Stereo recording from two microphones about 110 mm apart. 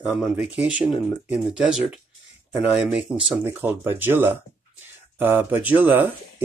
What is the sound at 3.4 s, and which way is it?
Speech, 20° right (ahead or behind).